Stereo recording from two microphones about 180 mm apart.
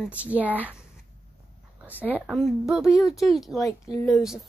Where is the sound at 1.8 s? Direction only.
10° right (ahead or behind).